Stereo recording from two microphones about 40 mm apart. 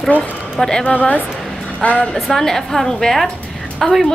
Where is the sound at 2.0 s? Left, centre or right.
Centre.